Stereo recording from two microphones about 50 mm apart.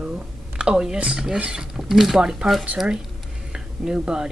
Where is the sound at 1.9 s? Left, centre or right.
Centre.